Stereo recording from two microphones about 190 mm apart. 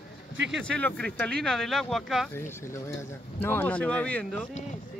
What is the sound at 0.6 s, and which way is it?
Speech, 5° left (ahead or behind).